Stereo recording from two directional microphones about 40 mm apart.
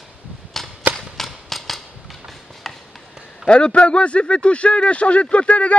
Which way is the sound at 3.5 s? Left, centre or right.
Left.